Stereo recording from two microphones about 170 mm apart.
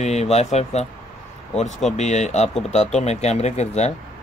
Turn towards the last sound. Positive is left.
turn(degrees=40)  # may be behind; listen again after turning